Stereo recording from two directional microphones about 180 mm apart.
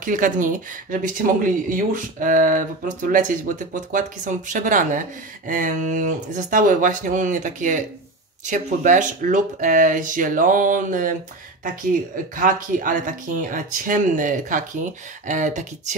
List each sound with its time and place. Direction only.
0.0 s speech: 45° right (ahead or behind)
12.4 s speech: 45° right (ahead or behind)